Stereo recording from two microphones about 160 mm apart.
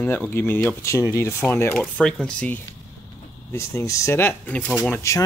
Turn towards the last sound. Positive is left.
turn(degrees=15)  # may be behind; listen again after turning